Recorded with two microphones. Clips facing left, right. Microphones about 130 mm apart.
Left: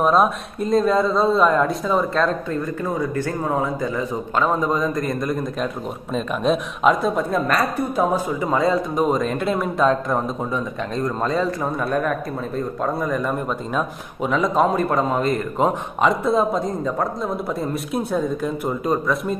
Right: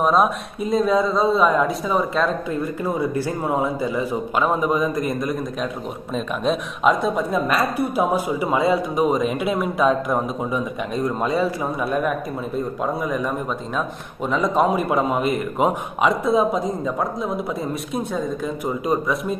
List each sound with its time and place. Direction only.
0.0 s a woman's voice: centre (ahead or behind)